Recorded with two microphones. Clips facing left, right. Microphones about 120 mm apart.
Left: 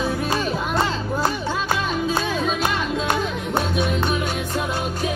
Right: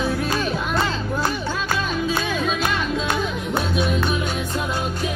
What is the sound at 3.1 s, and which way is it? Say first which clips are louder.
Music: left 1 dB; 45° left (ahead or behind).